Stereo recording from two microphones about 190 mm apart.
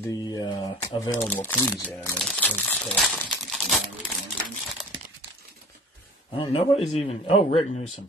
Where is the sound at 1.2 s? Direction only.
10° left (ahead or behind).